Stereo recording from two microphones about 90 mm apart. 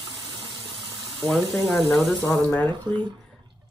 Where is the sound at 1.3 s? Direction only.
Centre (ahead or behind).